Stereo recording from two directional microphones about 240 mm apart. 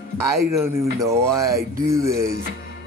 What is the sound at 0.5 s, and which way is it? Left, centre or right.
Speech, centre.